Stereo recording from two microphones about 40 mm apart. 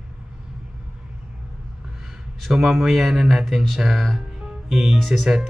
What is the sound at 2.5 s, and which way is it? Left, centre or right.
Speech, centre.